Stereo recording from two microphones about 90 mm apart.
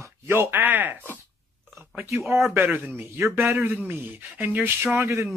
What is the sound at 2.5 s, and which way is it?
Speech, 25° right (ahead or behind).